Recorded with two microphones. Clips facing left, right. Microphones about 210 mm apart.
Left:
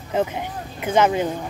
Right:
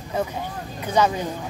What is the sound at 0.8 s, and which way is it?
Speech, 20° left (ahead or behind).